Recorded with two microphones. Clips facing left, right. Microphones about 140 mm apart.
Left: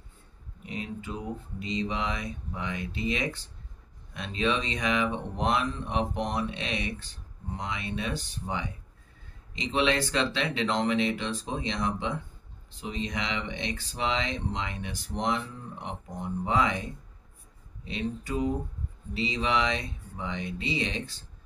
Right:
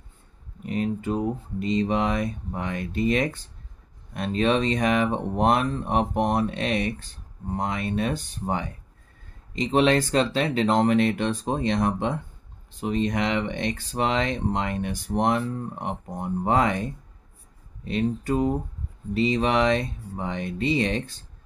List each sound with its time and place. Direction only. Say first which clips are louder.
0.7 s speech: right 10 dB; 50° right (ahead or behind)